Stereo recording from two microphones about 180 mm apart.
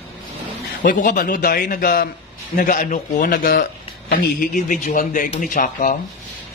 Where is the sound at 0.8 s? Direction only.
45° left (ahead or behind).